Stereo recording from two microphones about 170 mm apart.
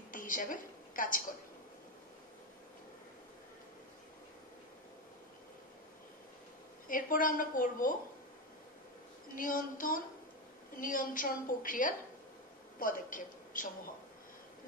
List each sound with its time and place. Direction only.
0.1 s a sound: 50° left (ahead or behind)
6.9 s a woman's voice: 55° left (ahead or behind)
9.3 s a woman's voice: 55° left (ahead or behind)